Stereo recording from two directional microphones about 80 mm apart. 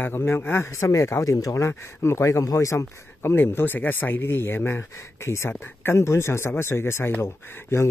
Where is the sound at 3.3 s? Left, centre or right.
Left.